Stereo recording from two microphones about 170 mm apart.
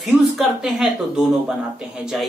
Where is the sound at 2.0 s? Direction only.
Centre (ahead or behind).